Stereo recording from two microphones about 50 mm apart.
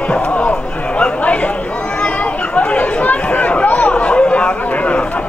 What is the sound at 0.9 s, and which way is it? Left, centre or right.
Chatter, left.